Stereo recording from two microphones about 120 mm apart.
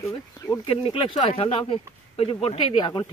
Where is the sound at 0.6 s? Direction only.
45° left (ahead or behind).